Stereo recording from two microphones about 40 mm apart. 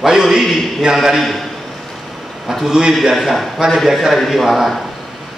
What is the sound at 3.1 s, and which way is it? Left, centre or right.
A man's voice, centre.